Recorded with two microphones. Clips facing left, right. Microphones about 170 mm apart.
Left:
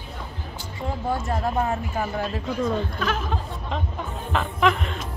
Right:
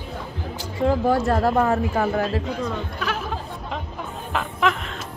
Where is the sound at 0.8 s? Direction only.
90° right.